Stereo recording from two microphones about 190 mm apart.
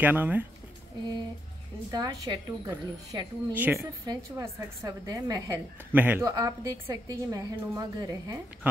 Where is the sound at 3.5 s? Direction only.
10° right (ahead or behind).